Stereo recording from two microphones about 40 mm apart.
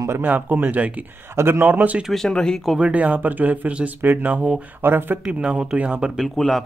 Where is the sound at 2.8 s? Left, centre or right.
Right.